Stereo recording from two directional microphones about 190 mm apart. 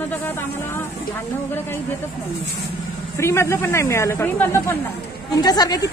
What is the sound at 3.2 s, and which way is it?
Speech, 15° left (ahead or behind).